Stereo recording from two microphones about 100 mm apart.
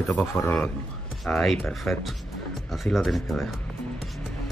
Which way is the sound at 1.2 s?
5° left (ahead or behind).